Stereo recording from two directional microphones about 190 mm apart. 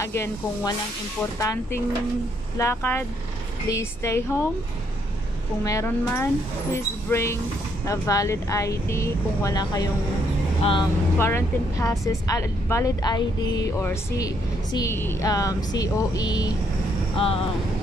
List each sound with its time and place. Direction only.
0.0 s speech: 15° left (ahead or behind)
5.6 s speech: 15° left (ahead or behind)
11.1 s speech: 15° left (ahead or behind)
17.2 s speech: 30° left (ahead or behind)